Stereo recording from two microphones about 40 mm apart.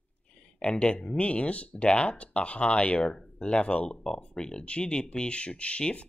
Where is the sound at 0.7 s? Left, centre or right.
Left.